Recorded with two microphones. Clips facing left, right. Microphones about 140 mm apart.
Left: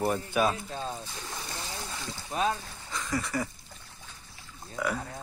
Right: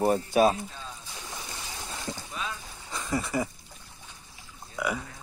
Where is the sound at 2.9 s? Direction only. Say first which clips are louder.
Right 2 dB; 20° right (ahead or behind).